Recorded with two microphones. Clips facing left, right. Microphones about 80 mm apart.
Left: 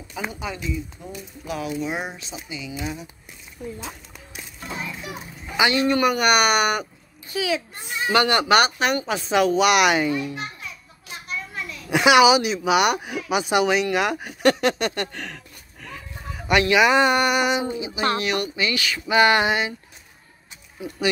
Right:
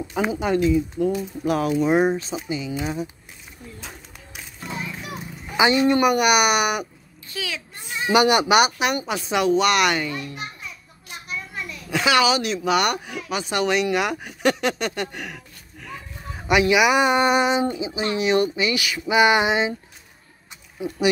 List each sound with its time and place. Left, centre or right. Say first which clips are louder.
0.2 s speech: right 9 dB; right
1.4 s speech: right 6 dB; right
5.6 s speech: right 2 dB; right
7.3 s speech: left 7 dB; centre
8.1 s speech: right 2 dB; centre
10.0 s a child's voice: left 6 dB; centre
11.9 s speech: left 4 dB; centre; by 18.5 s right
18.6 s speech: right 1 dB; centre